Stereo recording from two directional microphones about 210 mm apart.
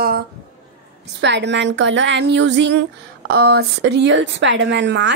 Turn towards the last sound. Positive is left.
turn(degrees=-60)  # may be behind; listen again after turning